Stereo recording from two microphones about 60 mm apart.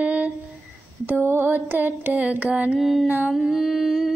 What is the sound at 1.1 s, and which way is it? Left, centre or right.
Music, right.